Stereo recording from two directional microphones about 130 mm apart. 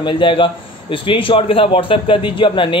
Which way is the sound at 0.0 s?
40° left (ahead or behind).